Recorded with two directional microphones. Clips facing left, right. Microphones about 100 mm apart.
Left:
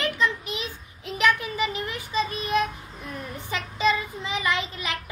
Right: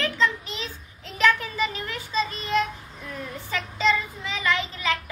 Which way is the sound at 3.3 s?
15° left (ahead or behind).